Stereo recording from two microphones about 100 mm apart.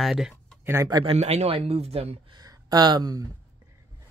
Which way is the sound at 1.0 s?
90° right.